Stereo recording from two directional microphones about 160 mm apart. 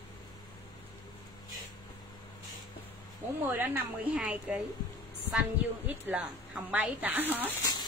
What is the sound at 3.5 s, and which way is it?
A woman's voice, 10° right (ahead or behind).